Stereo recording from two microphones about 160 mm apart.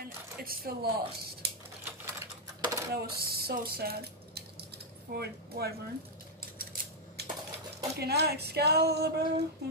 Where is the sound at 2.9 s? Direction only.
75° right (ahead or behind).